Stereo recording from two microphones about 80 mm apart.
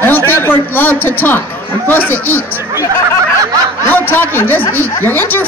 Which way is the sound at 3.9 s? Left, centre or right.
Left.